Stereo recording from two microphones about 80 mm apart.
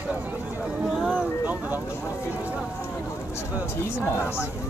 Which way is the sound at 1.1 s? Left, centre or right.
Centre.